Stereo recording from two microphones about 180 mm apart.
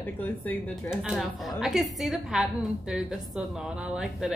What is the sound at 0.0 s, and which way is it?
Speech, 10° left (ahead or behind).